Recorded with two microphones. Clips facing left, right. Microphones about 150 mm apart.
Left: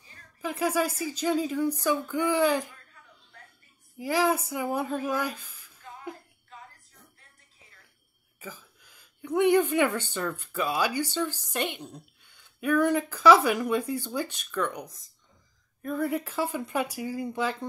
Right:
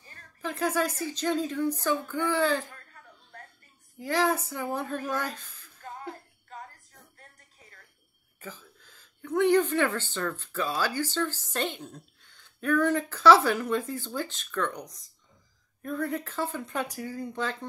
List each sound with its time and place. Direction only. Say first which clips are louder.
0.4 s speech: left 1 dB; 10° left (ahead or behind)
2.7 s a sound: right 4 dB; 50° right (ahead or behind)
4.0 s speech: left 1 dB; 10° left (ahead or behind)
5.8 s sneeze: right 4 dB; 50° right (ahead or behind)
6.5 s music: right 5 dB; 45° right (ahead or behind)
8.4 s speech: even; 10° left (ahead or behind)